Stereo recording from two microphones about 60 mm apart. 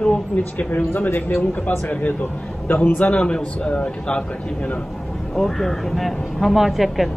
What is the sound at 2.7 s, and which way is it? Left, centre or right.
A man's voice, left.